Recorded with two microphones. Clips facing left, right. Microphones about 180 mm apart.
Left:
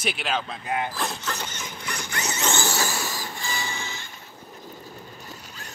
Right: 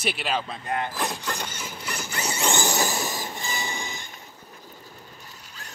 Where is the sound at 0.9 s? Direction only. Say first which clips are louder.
Right 1 dB; 15° right (ahead or behind).